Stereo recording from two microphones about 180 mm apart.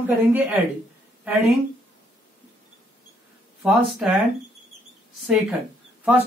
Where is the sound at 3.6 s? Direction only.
5° right (ahead or behind).